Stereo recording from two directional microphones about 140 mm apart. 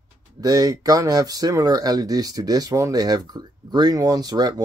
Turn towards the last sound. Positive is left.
turn(degrees=-30)  # may be behind; listen again after turning